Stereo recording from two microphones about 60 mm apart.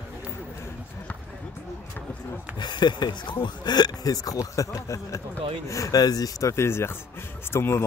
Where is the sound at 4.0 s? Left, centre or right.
Left.